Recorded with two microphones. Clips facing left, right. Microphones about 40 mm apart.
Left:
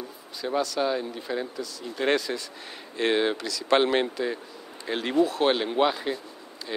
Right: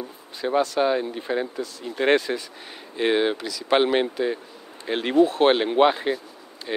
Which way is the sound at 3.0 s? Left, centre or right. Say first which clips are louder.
Right 3 dB; centre.